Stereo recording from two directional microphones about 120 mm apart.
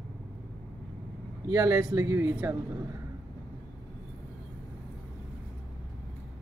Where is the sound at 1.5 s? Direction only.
25° right (ahead or behind).